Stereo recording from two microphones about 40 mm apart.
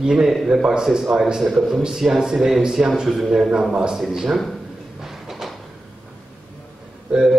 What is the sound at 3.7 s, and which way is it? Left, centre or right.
Speech, centre.